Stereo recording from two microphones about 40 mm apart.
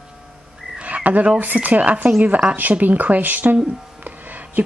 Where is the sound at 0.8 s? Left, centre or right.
Right.